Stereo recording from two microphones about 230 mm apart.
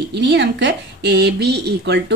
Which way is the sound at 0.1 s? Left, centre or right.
Right.